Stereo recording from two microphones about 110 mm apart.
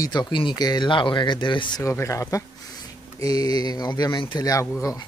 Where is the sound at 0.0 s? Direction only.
40° left (ahead or behind).